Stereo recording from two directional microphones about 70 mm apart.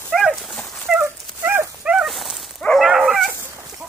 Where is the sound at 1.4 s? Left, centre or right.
Right.